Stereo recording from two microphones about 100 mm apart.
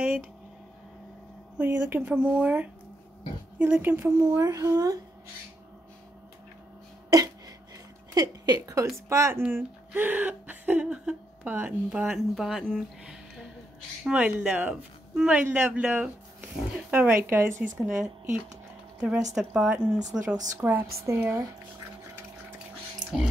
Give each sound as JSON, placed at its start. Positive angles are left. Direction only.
{"t": 0.0, "sound": "a sound", "side_deg": -10}
{"t": 1.6, "sound": "speech", "side_deg": -20}
{"t": 4.4, "sound": "speech", "side_deg": -35}
{"t": 7.1, "sound": "a sound", "side_deg": -40}
{"t": 9.1, "sound": "speech", "side_deg": -30}
{"t": 14.0, "sound": "speech", "side_deg": -10}
{"t": 18.9, "sound": "speech", "side_deg": -5}